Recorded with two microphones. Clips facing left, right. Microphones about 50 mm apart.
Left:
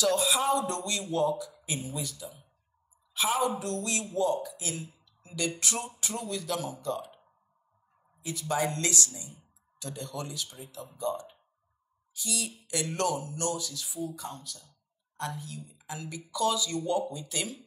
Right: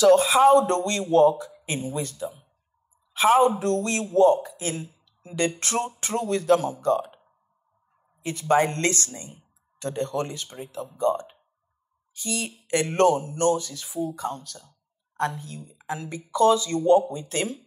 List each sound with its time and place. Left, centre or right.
0.0 s a man's voice: right
8.2 s a man's voice: right